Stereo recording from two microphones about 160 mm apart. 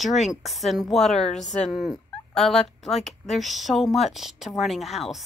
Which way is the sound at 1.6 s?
Centre (ahead or behind).